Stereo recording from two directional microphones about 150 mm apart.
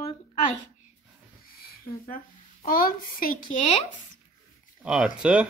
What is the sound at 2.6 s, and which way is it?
Speech, 70° left (ahead or behind).